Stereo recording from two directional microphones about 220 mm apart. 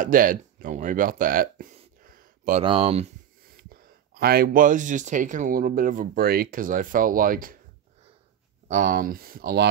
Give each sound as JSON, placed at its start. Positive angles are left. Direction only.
{"t": 0.0, "sound": "speech", "side_deg": -40}
{"t": 2.6, "sound": "speech", "side_deg": -25}
{"t": 3.6, "sound": "speech", "side_deg": -40}
{"t": 8.6, "sound": "speech", "side_deg": -35}